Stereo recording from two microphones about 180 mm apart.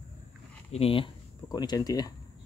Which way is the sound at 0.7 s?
30° left (ahead or behind).